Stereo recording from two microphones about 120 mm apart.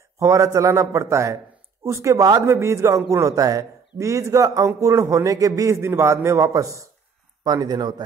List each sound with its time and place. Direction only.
0.2 s a man's voice: 25° right (ahead or behind)